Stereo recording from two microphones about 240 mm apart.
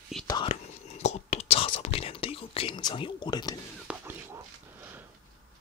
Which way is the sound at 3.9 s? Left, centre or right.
Centre.